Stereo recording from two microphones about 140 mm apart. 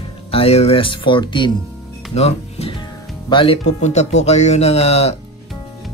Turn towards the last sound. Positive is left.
turn(degrees=50)  # may be behind; listen again after turning